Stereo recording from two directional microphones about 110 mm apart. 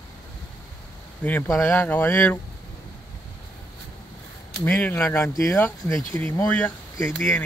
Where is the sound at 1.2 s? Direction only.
15° left (ahead or behind).